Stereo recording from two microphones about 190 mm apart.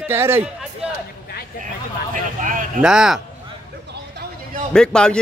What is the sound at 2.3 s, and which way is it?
Speech, 45° right (ahead or behind).